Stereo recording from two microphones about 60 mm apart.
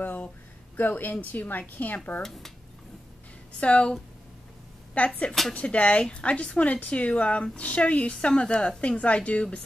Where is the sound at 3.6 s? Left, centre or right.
Centre.